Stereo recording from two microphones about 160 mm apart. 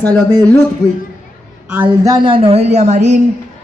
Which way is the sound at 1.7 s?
10° right (ahead or behind).